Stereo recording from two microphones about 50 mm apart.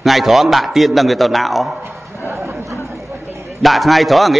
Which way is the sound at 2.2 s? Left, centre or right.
Right.